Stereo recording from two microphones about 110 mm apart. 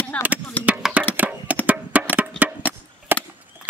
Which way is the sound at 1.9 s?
15° right (ahead or behind).